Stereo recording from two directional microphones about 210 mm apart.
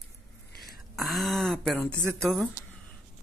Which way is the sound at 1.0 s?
Centre (ahead or behind).